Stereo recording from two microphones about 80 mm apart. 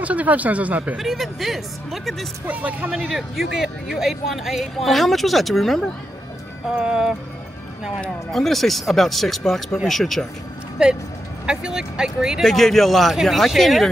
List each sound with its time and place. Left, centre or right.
0.0 s speech: centre
0.9 s speech: centre
2.4 s speech: centre
2.9 s speech: centre
6.8 s music: centre
8.3 s speech: centre
10.8 s music: centre
11.5 s speech: centre